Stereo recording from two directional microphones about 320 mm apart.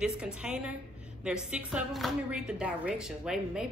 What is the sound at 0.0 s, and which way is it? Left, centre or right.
Speech, centre.